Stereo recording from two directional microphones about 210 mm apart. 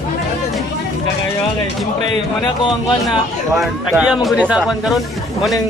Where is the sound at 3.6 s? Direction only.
5° right (ahead or behind).